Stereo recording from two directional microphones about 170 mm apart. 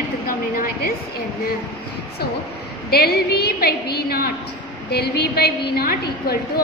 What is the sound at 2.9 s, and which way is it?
A woman's voice, 65° left (ahead or behind).